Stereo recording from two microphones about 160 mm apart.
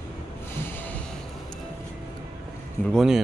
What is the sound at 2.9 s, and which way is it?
Speech, centre (ahead or behind).